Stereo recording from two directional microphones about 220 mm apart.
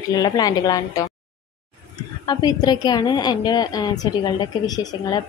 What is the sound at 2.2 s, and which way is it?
Speech, 20° left (ahead or behind).